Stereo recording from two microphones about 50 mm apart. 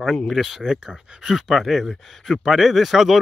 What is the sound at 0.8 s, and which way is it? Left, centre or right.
Speech, centre.